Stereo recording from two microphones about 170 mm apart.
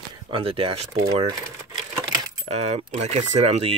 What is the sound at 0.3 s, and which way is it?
Speech, 35° right (ahead or behind).